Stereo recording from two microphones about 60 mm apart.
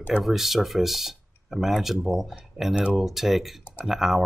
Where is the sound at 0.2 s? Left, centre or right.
Centre.